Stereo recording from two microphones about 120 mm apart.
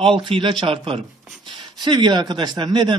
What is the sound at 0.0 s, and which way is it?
Speech, 45° right (ahead or behind).